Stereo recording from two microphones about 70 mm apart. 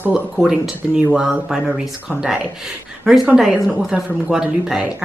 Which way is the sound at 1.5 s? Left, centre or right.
Centre.